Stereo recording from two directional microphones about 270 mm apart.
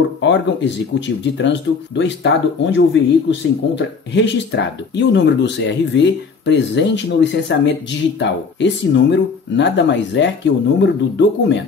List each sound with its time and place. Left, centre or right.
0.2 s speech: left